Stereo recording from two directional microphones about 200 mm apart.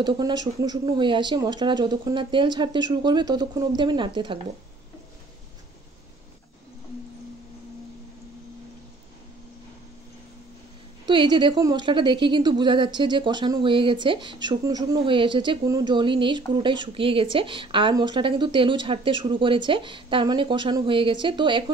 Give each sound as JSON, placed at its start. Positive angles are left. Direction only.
{"t": 0.0, "sound": "a woman's voice", "side_deg": -20}
{"t": 11.1, "sound": "a woman's voice", "side_deg": -25}